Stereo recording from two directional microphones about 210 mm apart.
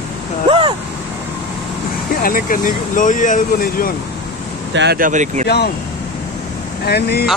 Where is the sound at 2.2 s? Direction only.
40° left (ahead or behind).